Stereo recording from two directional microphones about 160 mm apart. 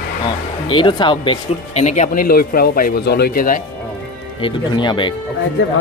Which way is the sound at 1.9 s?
50° left (ahead or behind).